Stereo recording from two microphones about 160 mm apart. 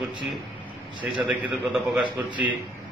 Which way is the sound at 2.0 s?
30° right (ahead or behind).